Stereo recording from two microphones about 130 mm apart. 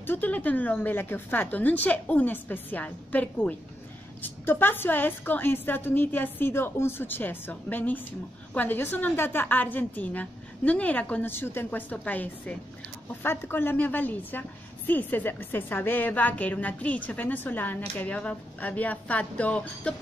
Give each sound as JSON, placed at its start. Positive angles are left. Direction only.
{"t": 0.0, "sound": "a woman's voice", "side_deg": 15}